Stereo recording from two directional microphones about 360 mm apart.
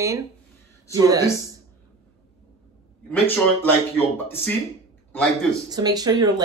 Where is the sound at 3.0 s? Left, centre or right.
Centre.